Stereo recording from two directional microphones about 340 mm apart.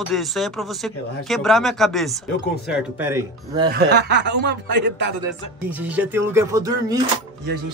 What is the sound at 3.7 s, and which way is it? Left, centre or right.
Speech, right.